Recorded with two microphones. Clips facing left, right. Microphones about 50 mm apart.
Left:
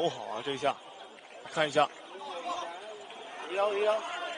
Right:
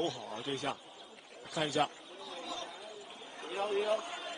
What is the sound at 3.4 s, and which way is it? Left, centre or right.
Speech, left.